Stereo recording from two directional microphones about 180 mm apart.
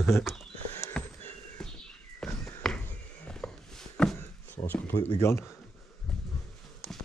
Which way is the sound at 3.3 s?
5° left (ahead or behind).